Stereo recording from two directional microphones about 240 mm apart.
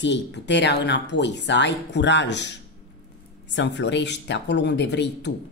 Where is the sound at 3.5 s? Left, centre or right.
Left.